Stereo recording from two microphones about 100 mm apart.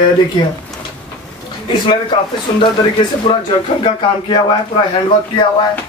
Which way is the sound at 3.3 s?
55° left (ahead or behind).